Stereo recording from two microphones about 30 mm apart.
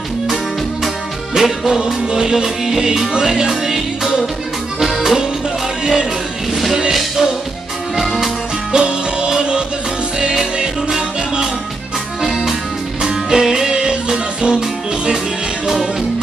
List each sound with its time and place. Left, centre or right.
1.3 s music: centre
2.1 s music: centre
4.8 s accordion: centre
6.5 s music: centre
8.7 s music: right
13.0 s music: right
15.6 s music: centre